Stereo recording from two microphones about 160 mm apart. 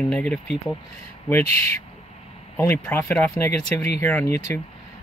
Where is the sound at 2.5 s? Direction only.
15° left (ahead or behind).